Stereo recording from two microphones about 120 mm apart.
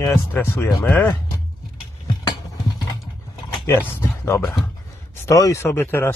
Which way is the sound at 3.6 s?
20° left (ahead or behind).